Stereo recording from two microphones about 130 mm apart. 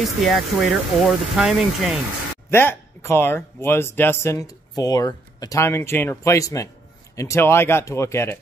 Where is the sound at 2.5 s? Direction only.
15° left (ahead or behind).